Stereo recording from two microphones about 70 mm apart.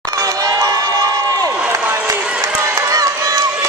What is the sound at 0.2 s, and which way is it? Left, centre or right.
Crowd, right.